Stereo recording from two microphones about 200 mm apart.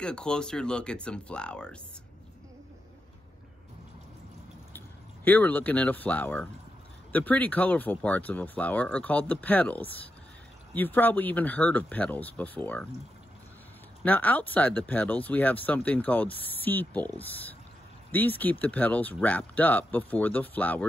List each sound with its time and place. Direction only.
0.0 s speech: 5° left (ahead or behind)
4.7 s speech: 10° left (ahead or behind)
14.0 s speech: 10° left (ahead or behind)
18.1 s speech: 10° left (ahead or behind)